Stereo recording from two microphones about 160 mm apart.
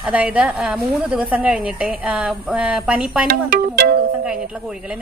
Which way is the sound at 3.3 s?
65° right (ahead or behind).